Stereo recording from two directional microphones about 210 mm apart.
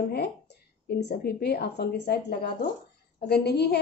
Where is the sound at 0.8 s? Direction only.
50° left (ahead or behind).